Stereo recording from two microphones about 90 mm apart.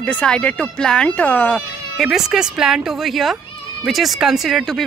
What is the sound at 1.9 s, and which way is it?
Speech, centre (ahead or behind).